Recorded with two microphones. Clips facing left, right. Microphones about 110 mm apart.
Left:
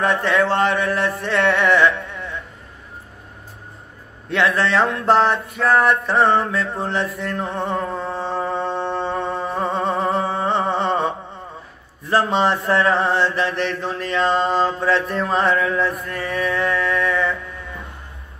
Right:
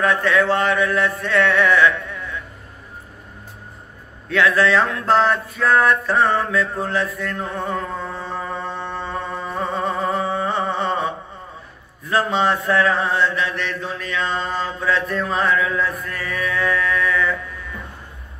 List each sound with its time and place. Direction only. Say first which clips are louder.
0.2 s mantra: even; 30° left (ahead or behind)
4.3 s a sound: right 2 dB; 25° left (ahead or behind)
12.0 s mantra: left 2 dB; 30° left (ahead or behind)